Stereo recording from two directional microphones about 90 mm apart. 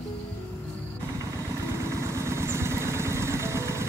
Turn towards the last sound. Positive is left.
turn(degrees=-30)  # may be behind; listen again after turning